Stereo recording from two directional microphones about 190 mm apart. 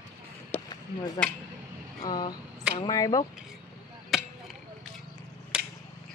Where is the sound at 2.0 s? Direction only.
20° left (ahead or behind).